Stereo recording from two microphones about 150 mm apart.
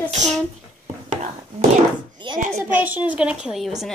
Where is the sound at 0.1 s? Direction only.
50° right (ahead or behind).